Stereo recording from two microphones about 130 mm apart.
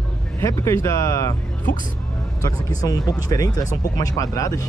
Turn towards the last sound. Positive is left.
turn(degrees=25)  # may be behind; listen again after turning